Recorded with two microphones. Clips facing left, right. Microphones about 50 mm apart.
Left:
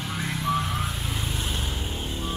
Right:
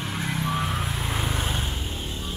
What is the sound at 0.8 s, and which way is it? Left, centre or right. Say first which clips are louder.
Vehicle: right 3 dB; right.